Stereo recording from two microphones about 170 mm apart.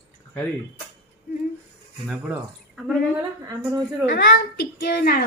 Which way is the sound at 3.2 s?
20° right (ahead or behind).